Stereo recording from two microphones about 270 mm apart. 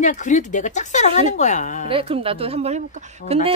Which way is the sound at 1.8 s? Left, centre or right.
Right.